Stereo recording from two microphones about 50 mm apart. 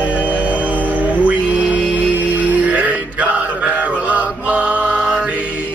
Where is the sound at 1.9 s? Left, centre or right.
Right.